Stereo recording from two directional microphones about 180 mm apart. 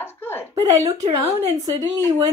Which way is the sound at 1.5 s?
20° right (ahead or behind).